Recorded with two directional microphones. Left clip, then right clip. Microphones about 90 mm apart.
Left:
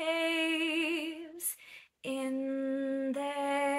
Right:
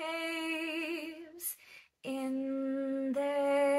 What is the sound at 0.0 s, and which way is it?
Female singing, 25° left (ahead or behind).